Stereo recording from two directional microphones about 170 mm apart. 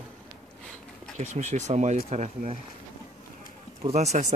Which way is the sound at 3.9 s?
40° right (ahead or behind).